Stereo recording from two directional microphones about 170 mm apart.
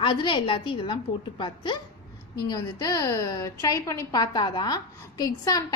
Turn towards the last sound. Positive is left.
turn(degrees=20)  # may be behind; listen again after turning